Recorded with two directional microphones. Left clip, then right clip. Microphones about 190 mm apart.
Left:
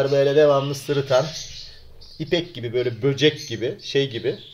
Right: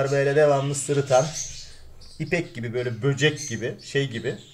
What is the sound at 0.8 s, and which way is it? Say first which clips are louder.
Speech: right 2 dB; 15° left (ahead or behind).